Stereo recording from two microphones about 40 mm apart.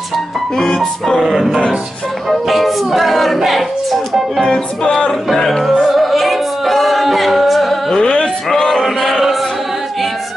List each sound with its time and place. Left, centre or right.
0.6 s speech: centre
1.2 s music: centre
5.3 s speech: centre
5.7 s music: centre
7.9 s music: left
8.5 s male singing: centre